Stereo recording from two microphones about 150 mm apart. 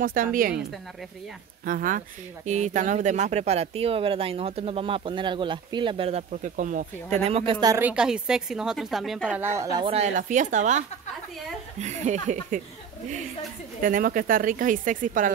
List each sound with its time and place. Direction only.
0.0 s speech: 70° right (ahead or behind)
1.7 s speech: 65° right (ahead or behind)
7.2 s a woman's voice: 40° right (ahead or behind)
7.8 s speech: 5° right (ahead or behind)
9.4 s a woman's voice: 20° right (ahead or behind)
10.1 s speech: 55° right (ahead or behind)
11.8 s speech: 50° right (ahead or behind)
13.8 s speech: 70° right (ahead or behind)